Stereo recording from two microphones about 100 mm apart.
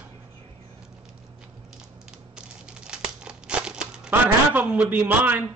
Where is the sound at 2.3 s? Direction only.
10° right (ahead or behind).